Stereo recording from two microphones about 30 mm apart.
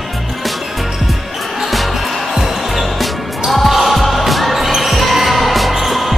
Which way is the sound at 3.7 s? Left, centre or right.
Centre.